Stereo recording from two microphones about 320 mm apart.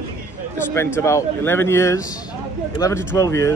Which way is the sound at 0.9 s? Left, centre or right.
Centre.